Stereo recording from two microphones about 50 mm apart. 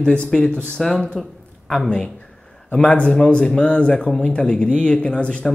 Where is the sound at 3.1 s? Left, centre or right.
Centre.